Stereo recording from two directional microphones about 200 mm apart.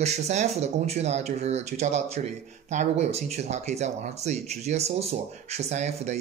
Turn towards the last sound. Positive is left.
turn(degrees=-35)  # may be behind; listen again after turning